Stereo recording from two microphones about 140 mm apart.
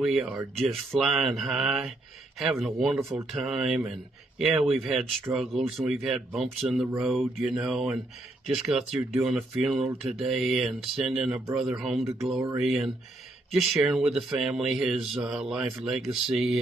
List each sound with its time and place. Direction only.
0.0 s speech: centre (ahead or behind)
5.3 s speech: 15° right (ahead or behind)
5.9 s speech: 5° right (ahead or behind)